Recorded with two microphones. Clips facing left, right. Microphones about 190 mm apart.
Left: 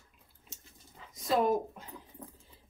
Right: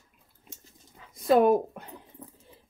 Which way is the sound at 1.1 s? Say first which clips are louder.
Right 8 dB; 60° right (ahead or behind).